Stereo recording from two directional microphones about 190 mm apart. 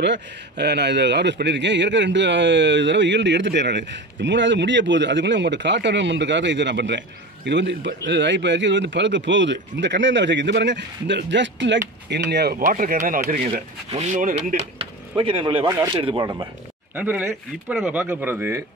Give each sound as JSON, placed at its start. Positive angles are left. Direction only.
{"t": 0.0, "sound": "a man's voice", "side_deg": -65}
{"t": 12.3, "sound": "speech", "side_deg": -60}
{"t": 13.4, "sound": "speech", "side_deg": -35}
{"t": 15.1, "sound": "speech", "side_deg": -25}
{"t": 16.9, "sound": "speech", "side_deg": -10}